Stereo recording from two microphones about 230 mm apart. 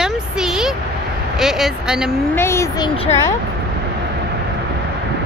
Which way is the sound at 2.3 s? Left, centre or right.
Centre.